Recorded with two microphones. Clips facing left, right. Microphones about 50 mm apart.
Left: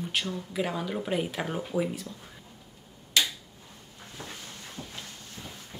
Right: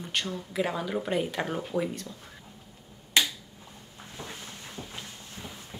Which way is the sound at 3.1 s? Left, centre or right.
Right.